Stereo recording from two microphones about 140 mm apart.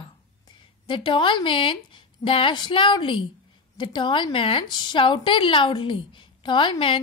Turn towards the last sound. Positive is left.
turn(degrees=35)  # may be behind; listen again after turning